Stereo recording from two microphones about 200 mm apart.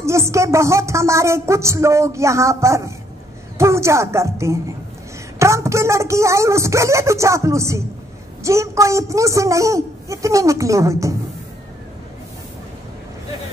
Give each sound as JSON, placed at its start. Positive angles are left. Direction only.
{"t": 0.0, "sound": "speech", "side_deg": -15}